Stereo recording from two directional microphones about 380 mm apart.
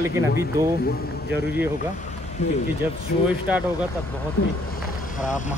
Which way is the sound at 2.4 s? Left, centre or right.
Centre.